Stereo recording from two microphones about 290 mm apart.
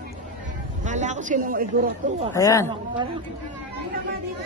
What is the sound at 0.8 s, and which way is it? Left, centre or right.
Speech, right.